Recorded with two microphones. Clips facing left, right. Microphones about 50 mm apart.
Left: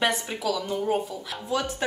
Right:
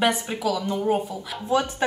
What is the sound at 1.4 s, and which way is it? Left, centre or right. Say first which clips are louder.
Speech: right 5 dB; right.